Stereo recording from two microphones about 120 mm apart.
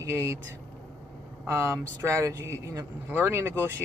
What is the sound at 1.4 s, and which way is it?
Speech, 20° right (ahead or behind).